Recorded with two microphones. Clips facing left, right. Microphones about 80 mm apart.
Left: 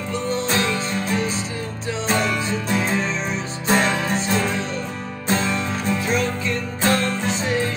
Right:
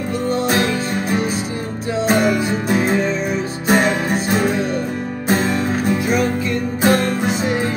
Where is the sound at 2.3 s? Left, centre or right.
Right.